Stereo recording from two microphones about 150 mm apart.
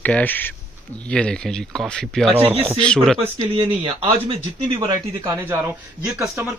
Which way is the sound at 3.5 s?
35° right (ahead or behind).